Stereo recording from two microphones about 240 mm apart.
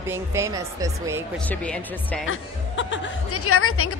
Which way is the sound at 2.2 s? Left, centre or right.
Left.